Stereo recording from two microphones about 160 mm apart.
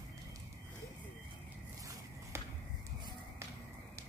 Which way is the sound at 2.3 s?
15° right (ahead or behind).